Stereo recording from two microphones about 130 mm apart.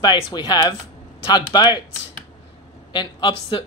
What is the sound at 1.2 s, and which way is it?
Speech, 35° left (ahead or behind).